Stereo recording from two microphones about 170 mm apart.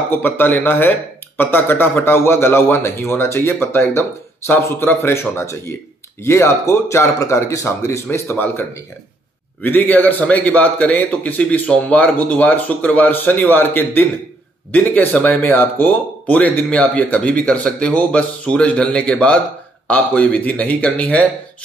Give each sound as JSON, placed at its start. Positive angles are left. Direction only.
{"t": 0.1, "sound": "speech", "side_deg": 10}